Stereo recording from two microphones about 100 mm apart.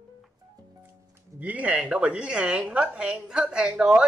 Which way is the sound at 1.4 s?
15° right (ahead or behind).